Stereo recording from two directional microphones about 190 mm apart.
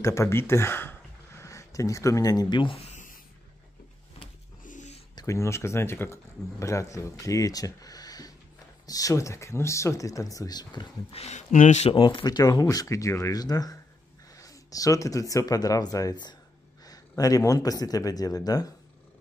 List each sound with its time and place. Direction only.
0.0 s speech: 15° left (ahead or behind)
2.9 s writing: 40° left (ahead or behind)
4.6 s a sound: 40° left (ahead or behind)
5.1 s speech: 15° left (ahead or behind)